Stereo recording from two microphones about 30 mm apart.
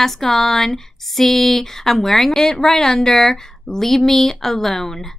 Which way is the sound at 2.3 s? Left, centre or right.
Centre.